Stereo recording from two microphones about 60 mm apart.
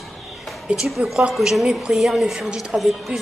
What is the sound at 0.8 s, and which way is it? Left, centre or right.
Speech, centre.